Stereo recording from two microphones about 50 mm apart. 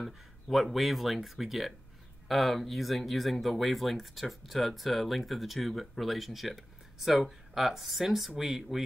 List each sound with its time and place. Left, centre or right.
0.0 s speech: centre